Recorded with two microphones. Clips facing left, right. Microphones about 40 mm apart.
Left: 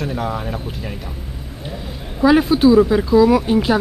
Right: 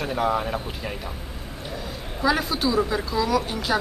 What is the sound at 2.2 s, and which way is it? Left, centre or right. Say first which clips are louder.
Speech: left 10 dB; centre.